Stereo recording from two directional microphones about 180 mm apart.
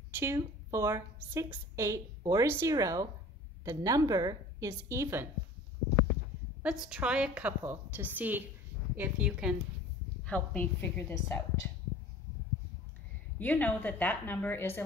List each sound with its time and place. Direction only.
0.1 s a woman's voice: 15° right (ahead or behind)
6.6 s a woman's voice: 5° right (ahead or behind)
10.2 s a woman's voice: 10° left (ahead or behind)
13.4 s a woman's voice: 10° left (ahead or behind)